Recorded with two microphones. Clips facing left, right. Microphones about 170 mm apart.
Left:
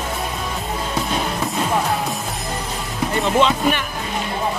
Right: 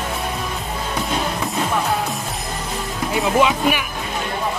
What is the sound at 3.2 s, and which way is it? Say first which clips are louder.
Speech: even; 5° right (ahead or behind).